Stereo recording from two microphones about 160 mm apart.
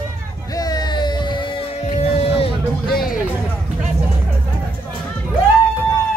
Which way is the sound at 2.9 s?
70° left (ahead or behind).